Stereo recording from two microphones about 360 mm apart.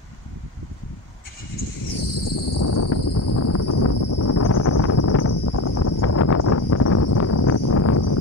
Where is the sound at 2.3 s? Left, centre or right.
Left.